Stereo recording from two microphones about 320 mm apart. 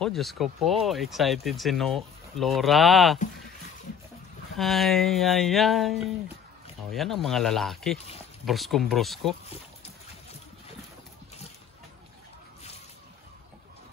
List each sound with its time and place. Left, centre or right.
0.0 s speech: centre
4.6 s speech: centre